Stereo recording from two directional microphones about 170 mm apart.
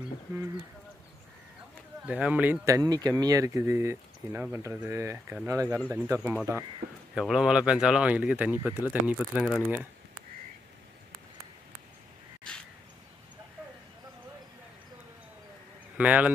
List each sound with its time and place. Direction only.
2.0 s speech: 10° right (ahead or behind)
16.0 s speech: 10° right (ahead or behind)